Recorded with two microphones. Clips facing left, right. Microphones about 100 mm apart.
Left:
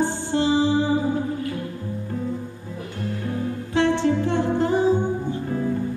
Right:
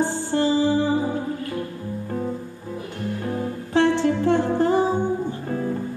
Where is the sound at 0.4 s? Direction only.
50° right (ahead or behind).